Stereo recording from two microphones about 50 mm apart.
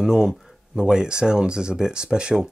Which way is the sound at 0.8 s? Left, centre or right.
Centre.